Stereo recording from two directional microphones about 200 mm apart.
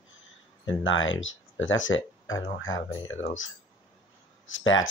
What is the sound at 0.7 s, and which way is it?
Speech, 75° left (ahead or behind).